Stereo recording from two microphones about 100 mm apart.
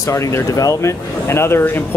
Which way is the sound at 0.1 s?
30° left (ahead or behind).